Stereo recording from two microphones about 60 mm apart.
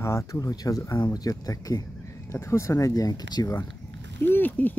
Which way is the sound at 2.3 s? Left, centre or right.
Left.